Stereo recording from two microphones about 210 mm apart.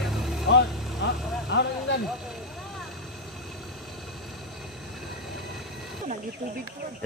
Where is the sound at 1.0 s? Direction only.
55° left (ahead or behind).